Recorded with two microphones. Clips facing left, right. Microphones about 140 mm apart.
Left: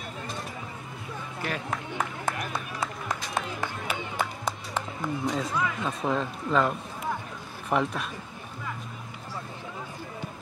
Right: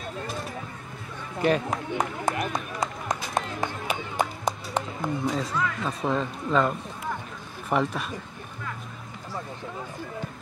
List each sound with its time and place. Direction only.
1.4 s speech: 20° right (ahead or behind)
3.6 s music: 15° right (ahead or behind)
5.2 s speech: centre (ahead or behind)